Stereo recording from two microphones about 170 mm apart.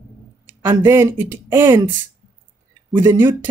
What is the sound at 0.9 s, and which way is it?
Speech, 15° right (ahead or behind).